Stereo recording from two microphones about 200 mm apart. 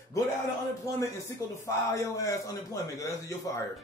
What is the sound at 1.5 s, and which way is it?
A man's voice, 15° left (ahead or behind).